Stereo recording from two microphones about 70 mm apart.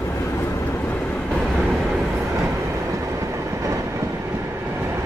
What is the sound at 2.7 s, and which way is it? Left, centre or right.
Train, right.